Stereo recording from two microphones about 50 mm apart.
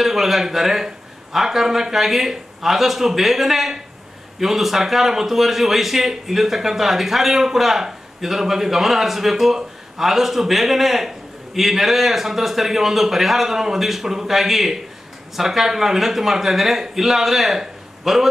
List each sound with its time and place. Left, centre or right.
0.0 s a man's voice: centre